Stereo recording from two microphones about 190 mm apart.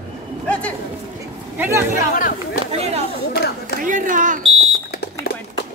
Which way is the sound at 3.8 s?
45° right (ahead or behind).